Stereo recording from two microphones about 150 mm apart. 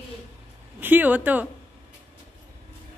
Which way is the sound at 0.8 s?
10° right (ahead or behind).